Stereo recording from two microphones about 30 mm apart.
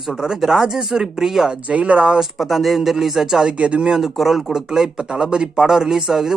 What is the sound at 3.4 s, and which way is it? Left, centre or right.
Speech, right.